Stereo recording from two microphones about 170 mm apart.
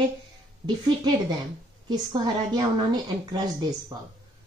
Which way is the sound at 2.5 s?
25° right (ahead or behind).